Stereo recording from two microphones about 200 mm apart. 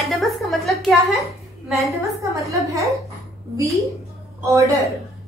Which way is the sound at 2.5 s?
15° right (ahead or behind).